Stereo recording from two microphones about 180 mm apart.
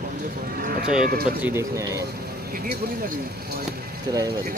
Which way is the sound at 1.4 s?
15° right (ahead or behind).